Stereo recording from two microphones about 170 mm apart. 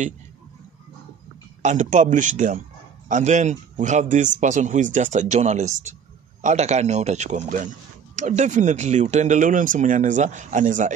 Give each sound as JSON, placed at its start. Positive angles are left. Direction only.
{"t": 1.6, "sound": "speech", "side_deg": -45}